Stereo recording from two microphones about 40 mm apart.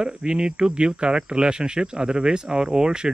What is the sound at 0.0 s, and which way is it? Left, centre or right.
Speech, right.